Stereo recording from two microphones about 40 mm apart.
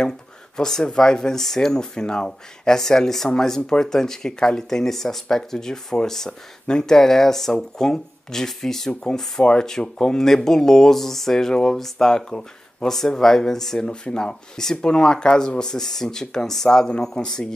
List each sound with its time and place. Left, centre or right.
0.6 s speech: centre
13.7 s speech: left